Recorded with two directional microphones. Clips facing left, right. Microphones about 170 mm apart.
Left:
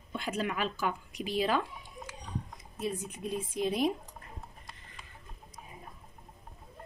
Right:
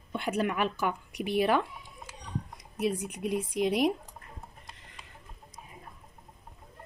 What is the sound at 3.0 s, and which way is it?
Speech, 70° right (ahead or behind).